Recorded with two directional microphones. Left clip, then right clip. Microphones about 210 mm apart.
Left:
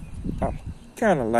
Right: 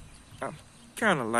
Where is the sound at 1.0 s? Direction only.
10° right (ahead or behind).